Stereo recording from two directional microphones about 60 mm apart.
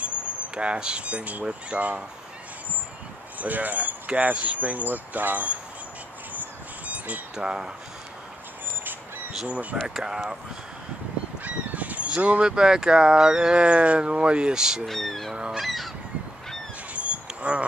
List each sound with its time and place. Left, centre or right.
0.6 s speech: centre
3.3 s speech: right
7.3 s speech: centre
9.5 s speech: right
9.8 s speech: centre
11.4 s speech: right
14.9 s music: centre
15.3 s speech: centre
15.6 s goose: centre
16.9 s goose: right